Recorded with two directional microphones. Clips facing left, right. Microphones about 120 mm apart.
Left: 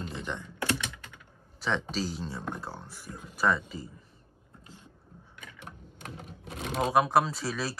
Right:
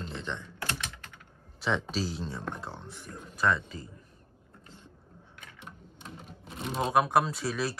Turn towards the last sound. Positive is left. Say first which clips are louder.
# right 1 dB
turn(degrees=0)  # may be behind; listen again after turning